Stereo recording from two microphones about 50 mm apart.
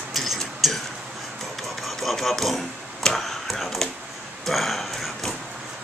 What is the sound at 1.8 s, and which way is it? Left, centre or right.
Speech, centre.